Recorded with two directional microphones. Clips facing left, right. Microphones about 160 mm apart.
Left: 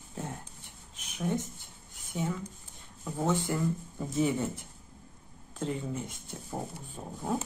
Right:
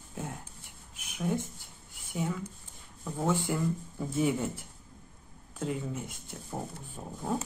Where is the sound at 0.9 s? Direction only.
5° right (ahead or behind).